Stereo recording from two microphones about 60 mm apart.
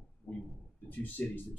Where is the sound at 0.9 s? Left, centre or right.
Left.